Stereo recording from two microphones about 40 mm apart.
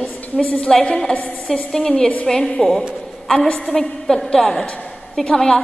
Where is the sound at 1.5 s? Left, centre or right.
Centre.